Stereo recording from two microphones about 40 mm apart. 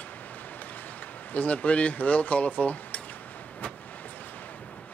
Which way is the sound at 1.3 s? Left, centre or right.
Left.